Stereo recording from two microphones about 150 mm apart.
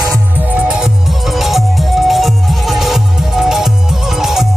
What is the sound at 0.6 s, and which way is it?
Music, 5° right (ahead or behind).